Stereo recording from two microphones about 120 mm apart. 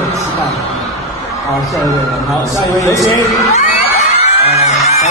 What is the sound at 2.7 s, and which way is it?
Speech, 25° left (ahead or behind).